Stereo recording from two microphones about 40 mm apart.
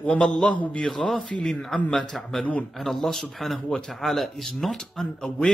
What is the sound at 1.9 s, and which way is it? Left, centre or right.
Speech, centre.